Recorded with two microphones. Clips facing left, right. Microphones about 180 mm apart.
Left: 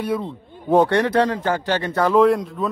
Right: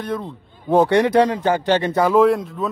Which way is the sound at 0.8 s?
15° right (ahead or behind).